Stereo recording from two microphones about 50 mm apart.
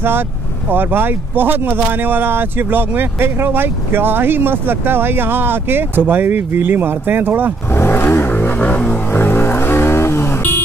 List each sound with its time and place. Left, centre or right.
0.7 s speech: right
7.7 s vehicle: left
8.6 s music: left
9.1 s a sound: left